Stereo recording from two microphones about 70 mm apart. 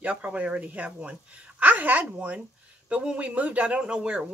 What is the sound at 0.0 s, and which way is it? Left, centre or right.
Speech, centre.